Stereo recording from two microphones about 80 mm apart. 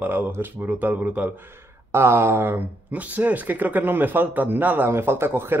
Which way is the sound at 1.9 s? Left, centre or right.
Right.